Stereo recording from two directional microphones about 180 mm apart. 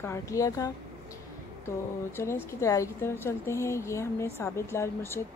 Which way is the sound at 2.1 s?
15° left (ahead or behind).